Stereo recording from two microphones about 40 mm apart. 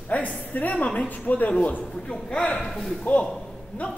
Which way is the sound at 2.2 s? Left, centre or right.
Left.